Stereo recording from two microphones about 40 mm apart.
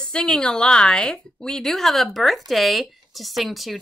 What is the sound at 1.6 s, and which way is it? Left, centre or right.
Speech, centre.